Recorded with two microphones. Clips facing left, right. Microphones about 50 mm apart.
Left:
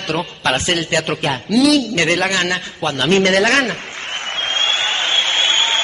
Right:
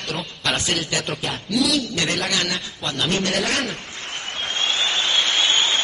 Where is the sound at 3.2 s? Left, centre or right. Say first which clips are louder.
Left 9 dB; left.